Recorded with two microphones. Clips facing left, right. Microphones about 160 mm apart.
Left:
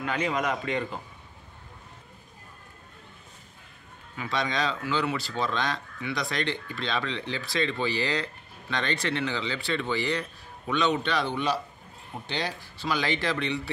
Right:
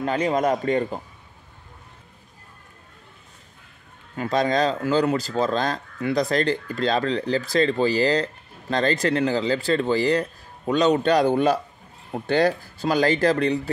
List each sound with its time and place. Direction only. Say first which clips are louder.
0.0 s speech: right 7 dB; 35° right (ahead or behind)
4.2 s speech: right 8 dB; 40° right (ahead or behind)